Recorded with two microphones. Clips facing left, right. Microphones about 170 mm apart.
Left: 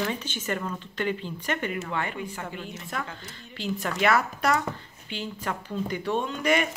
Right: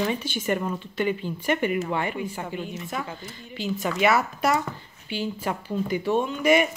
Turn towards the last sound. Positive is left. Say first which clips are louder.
# right 4 dB
turn(degrees=-10)  # may be behind; listen again after turning